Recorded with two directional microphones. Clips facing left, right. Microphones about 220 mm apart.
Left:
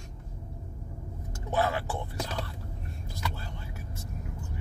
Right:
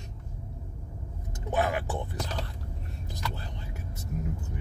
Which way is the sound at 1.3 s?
15° right (ahead or behind).